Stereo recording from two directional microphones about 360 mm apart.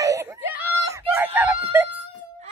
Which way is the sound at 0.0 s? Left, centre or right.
Centre.